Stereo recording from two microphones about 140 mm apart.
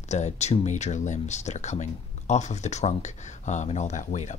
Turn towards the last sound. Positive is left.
turn(degrees=60)  # may be behind; listen again after turning